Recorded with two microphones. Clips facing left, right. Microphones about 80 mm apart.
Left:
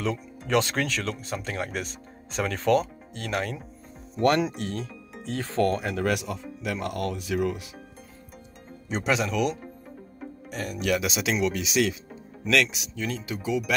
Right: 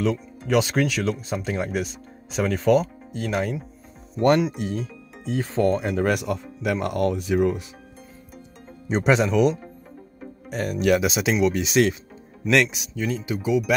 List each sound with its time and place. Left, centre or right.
0.0 s speech: centre
4.2 s speech: centre
4.6 s speech: centre; by 6.1 s right
6.1 s speech: right
8.8 s speech: right
10.5 s speech: right
11.0 s speech: right
11.5 s speech: right
12.4 s speech: right
13.0 s speech: centre